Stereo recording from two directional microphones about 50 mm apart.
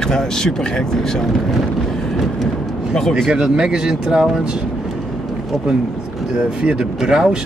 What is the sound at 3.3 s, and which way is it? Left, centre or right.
Speech, centre.